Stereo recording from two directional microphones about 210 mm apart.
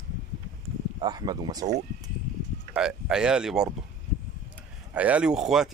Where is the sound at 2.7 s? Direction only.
5° right (ahead or behind).